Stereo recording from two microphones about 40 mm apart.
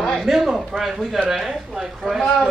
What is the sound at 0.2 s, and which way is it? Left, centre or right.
A man's voice, centre.